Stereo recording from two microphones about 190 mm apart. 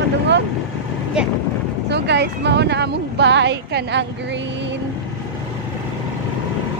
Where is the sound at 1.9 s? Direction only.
65° right (ahead or behind).